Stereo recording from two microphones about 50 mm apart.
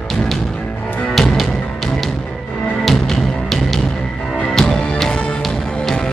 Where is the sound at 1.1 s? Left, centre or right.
Centre.